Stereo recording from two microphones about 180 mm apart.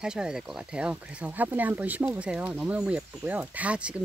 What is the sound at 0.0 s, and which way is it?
Speech, 5° right (ahead or behind).